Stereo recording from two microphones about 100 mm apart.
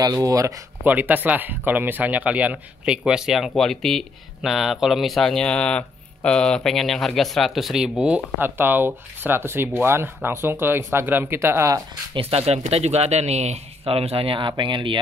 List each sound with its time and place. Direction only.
0.0 s speech: 35° right (ahead or behind)
0.8 s speech: 15° right (ahead or behind)
8.4 s speech: 20° right (ahead or behind)
12.1 s speech: 70° right (ahead or behind); by 15.0 s 55° right (ahead or behind)